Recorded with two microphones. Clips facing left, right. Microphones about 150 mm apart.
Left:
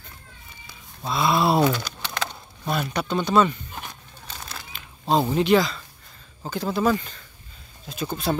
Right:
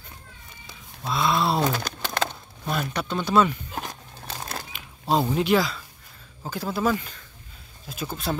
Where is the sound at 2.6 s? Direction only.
Centre (ahead or behind).